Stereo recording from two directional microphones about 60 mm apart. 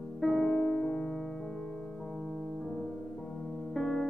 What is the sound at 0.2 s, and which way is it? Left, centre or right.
Music, centre.